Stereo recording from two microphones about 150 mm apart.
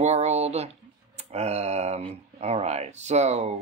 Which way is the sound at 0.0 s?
45° right (ahead or behind).